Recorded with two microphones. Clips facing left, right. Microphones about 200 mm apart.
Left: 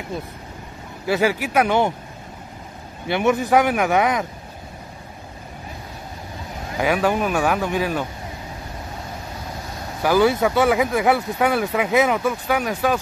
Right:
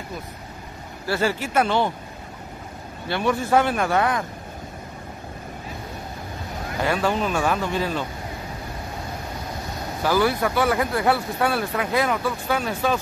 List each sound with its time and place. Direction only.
1.0 s speech: 15° left (ahead or behind)
3.1 s speech: 20° left (ahead or behind)
6.8 s speech: 15° left (ahead or behind)
10.0 s speech: 20° left (ahead or behind)